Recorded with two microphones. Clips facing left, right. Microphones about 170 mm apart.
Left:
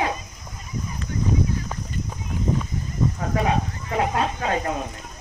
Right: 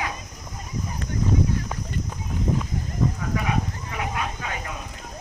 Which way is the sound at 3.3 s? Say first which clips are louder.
Left 3 dB; 30° left (ahead or behind).